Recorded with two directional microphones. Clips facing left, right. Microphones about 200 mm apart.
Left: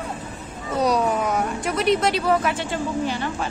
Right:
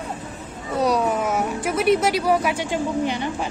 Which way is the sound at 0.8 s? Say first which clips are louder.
Even; centre (ahead or behind).